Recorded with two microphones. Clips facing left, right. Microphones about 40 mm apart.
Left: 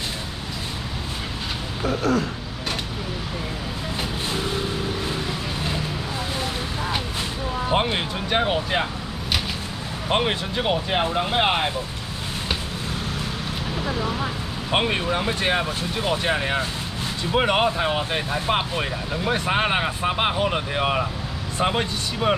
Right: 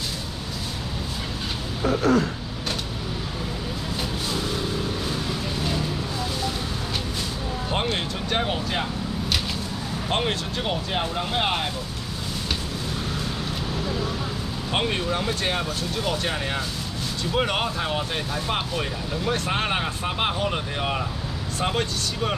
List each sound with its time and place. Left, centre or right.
2.1 s a sound: right
7.7 s music: centre
10.0 s speech: centre
14.7 s speech: centre